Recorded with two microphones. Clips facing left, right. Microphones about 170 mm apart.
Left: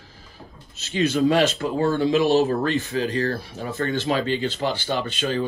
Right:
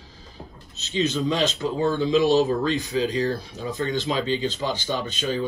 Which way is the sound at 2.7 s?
15° right (ahead or behind).